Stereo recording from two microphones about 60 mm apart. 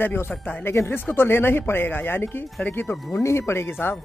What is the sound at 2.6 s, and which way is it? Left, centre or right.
Speech, left.